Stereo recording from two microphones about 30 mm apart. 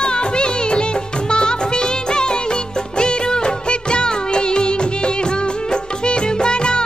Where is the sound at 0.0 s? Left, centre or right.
Left.